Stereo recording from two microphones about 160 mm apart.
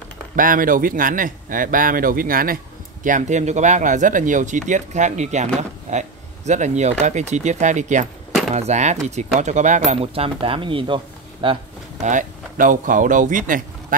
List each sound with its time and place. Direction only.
0.4 s a man's voice: 60° right (ahead or behind); by 11.6 s 30° right (ahead or behind)
12.0 s a man's voice: 50° right (ahead or behind)